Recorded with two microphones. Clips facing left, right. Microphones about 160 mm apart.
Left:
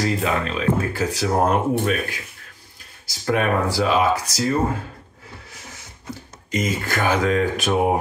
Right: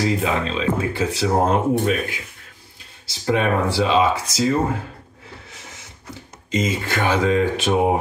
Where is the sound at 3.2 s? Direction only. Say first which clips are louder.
Right 1 dB; 25° right (ahead or behind).